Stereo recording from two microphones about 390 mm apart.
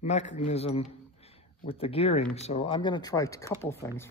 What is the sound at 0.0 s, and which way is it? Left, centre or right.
Speech, centre.